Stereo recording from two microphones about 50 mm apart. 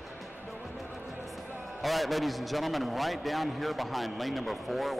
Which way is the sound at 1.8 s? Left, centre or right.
Centre.